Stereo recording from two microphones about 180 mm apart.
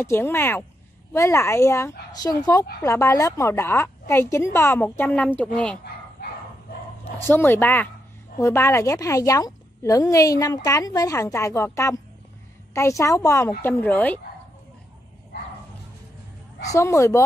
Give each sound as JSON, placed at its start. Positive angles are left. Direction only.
{"t": 0.0, "sound": "a woman's voice", "side_deg": 15}
{"t": 7.2, "sound": "a woman's voice", "side_deg": 10}
{"t": 16.6, "sound": "a woman's voice", "side_deg": 15}